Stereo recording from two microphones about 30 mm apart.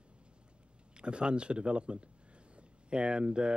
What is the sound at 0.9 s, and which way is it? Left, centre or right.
Speech, right.